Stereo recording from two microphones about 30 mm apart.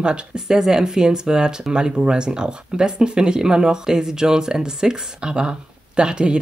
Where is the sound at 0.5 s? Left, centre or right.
Centre.